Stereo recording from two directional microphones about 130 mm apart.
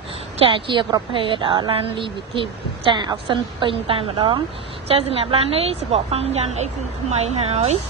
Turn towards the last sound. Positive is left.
turn(degrees=-55)  # may be behind; listen again after turning